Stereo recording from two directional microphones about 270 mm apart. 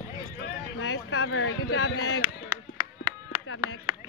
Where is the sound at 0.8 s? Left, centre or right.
Left.